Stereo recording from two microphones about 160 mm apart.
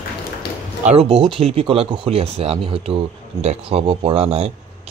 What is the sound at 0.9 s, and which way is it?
Speech, 40° right (ahead or behind).